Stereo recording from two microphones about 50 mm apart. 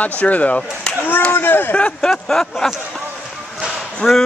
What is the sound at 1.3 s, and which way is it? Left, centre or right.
Speech, left.